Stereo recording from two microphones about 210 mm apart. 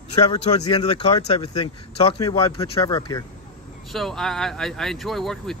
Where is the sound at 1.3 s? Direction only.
25° left (ahead or behind).